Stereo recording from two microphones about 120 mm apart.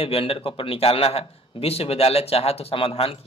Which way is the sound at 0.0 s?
50° left (ahead or behind).